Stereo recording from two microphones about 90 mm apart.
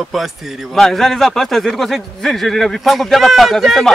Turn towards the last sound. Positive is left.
turn(degrees=0)  # may be behind; listen again after turning